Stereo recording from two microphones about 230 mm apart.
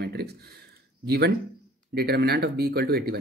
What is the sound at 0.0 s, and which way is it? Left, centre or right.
Speech, right.